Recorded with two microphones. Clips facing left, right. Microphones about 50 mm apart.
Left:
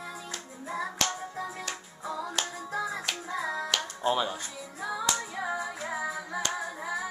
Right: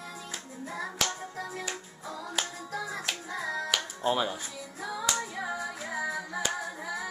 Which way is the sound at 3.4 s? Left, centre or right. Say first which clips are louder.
Even; centre.